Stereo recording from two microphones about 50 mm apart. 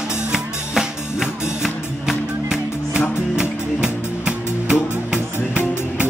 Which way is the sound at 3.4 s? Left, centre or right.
Centre.